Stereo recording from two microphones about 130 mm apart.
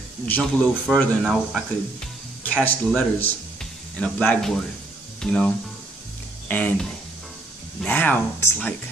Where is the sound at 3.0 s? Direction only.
15° left (ahead or behind).